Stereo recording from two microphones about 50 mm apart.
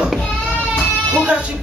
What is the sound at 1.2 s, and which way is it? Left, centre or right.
Speech, right.